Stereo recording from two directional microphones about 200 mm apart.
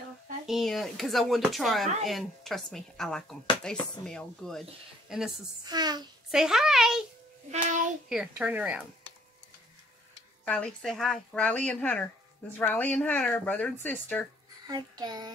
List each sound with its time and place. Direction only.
0.5 s speech: centre (ahead or behind)
5.7 s a sound: 20° right (ahead or behind)
6.3 s speech: centre (ahead or behind)
8.1 s a woman's voice: 5° right (ahead or behind)
10.4 s speech: 5° left (ahead or behind)
14.7 s a child's voice: 20° right (ahead or behind)